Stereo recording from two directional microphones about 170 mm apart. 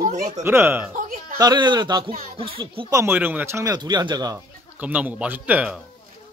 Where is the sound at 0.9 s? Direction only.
55° right (ahead or behind).